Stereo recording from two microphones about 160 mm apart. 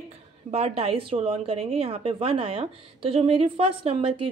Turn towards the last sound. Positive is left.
turn(degrees=-35)  # may be behind; listen again after turning